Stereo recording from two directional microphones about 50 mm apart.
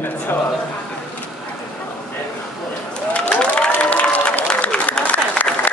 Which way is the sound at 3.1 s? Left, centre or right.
Left.